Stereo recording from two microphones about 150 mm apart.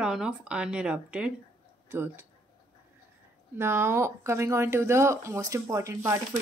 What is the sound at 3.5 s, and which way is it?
Speech, 15° right (ahead or behind).